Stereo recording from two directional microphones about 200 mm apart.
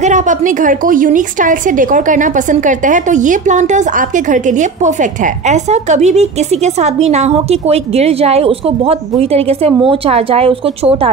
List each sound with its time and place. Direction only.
0.0 s a woman's voice: 40° right (ahead or behind)